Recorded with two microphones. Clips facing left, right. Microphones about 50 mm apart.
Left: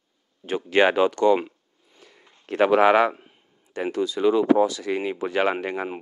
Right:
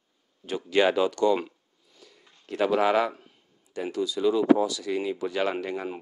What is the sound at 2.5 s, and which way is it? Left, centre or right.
Speech, left.